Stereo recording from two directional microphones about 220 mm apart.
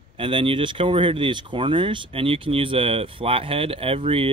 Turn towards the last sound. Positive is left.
turn(degrees=-25)  # may be behind; listen again after turning